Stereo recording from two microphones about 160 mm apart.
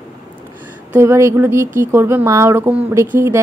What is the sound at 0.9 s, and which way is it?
A woman's voice, 15° right (ahead or behind).